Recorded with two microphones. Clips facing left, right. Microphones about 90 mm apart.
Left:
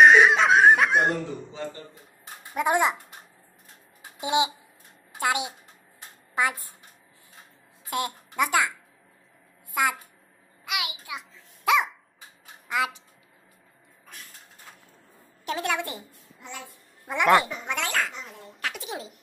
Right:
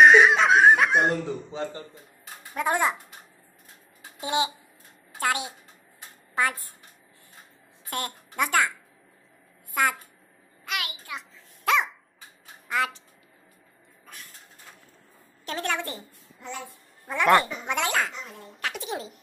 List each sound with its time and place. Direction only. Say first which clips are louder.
0.0 s laughter: even; centre (ahead or behind)
2.5 s speech: left 2 dB; 15° left (ahead or behind)
4.2 s speech: left 2 dB; 15° left (ahead or behind)
7.9 s speech: left 3 dB; 10° left (ahead or behind)
10.6 s babbling: left 1 dB; 10° left (ahead or behind)
12.7 s speech: even; 10° left (ahead or behind)
15.4 s a woman's voice: left 1 dB; 10° left (ahead or behind)
17.3 s a woman's voice: even; centre (ahead or behind)